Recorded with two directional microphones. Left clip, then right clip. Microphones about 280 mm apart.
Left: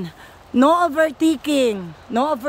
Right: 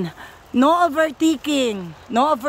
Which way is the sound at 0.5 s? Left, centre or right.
Centre.